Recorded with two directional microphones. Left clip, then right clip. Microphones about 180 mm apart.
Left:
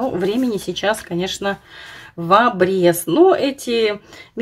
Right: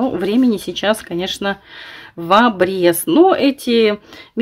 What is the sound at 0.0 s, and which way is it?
Speech, 30° right (ahead or behind).